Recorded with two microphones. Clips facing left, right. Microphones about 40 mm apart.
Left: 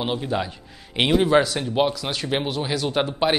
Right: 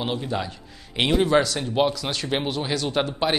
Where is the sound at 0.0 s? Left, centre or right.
Centre.